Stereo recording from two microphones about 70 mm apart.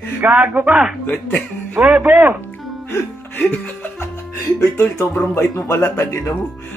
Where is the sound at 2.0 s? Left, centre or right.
Right.